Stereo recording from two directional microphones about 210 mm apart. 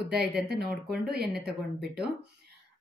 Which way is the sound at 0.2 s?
50° right (ahead or behind).